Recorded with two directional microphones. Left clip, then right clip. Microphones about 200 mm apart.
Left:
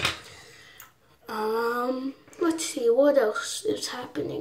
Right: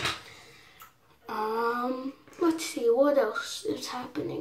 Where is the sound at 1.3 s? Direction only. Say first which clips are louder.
Left 2 dB; 10° left (ahead or behind).